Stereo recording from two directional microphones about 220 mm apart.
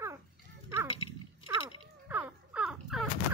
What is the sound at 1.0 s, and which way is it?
Dog, 25° left (ahead or behind).